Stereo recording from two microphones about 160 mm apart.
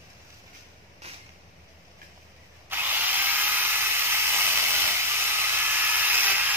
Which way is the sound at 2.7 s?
10° right (ahead or behind).